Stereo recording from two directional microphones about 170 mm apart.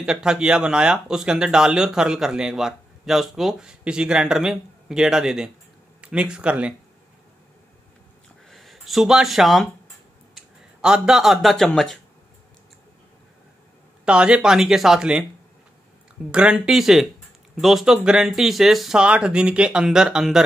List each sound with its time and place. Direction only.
0.0 s speech: 5° right (ahead or behind)
8.5 s speech: centre (ahead or behind)
14.0 s speech: 5° right (ahead or behind)
16.3 s speech: 5° right (ahead or behind)